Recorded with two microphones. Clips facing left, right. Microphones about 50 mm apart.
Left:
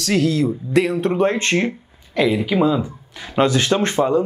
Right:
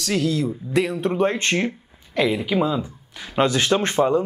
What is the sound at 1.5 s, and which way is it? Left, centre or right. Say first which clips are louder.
Speech: left 3 dB; centre.